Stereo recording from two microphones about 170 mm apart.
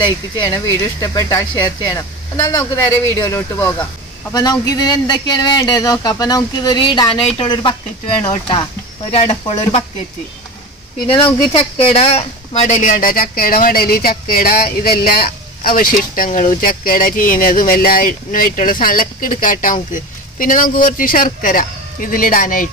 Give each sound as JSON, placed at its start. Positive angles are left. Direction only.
{"t": 0.0, "sound": "speech", "side_deg": 25}
{"t": 11.9, "sound": "speech", "side_deg": 35}